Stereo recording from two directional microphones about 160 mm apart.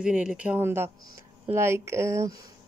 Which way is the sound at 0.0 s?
5° right (ahead or behind).